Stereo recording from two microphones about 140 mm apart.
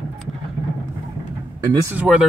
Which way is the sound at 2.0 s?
5° right (ahead or behind).